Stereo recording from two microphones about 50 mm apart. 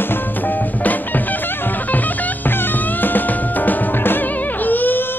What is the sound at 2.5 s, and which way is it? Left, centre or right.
Music, left.